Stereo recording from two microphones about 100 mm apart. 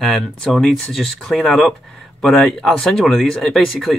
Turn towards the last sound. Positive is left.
turn(degrees=0)  # may be behind; listen again after turning